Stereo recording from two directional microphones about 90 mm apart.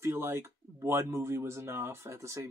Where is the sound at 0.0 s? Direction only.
30° right (ahead or behind).